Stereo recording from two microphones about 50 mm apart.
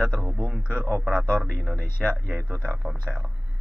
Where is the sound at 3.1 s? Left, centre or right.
Right.